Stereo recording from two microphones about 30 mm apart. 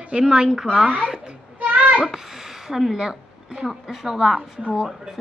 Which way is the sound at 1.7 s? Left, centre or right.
Right.